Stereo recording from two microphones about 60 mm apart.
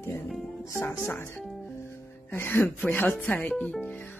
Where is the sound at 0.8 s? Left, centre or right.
Left.